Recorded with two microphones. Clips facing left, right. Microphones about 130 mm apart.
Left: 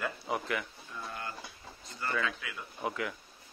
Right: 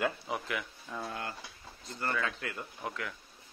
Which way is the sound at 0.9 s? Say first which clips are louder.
Right 4 dB; 85° right.